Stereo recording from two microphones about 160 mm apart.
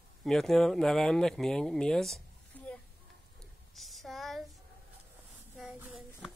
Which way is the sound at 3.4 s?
Centre (ahead or behind).